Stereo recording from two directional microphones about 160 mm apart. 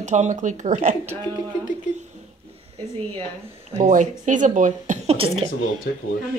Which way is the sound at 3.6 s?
40° right (ahead or behind).